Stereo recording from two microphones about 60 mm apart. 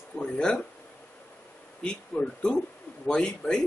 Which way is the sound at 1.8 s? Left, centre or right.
Centre.